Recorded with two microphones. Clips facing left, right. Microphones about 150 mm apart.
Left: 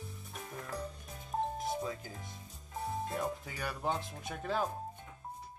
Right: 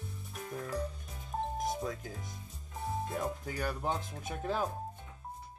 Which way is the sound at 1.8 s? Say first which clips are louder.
Right 1 dB; centre (ahead or behind).